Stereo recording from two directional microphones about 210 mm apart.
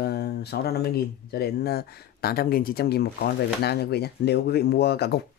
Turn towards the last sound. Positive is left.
turn(degrees=50)  # may be behind; listen again after turning